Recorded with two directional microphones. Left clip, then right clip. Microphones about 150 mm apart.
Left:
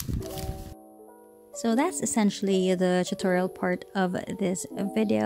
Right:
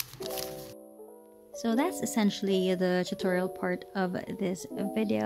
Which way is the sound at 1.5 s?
25° left (ahead or behind).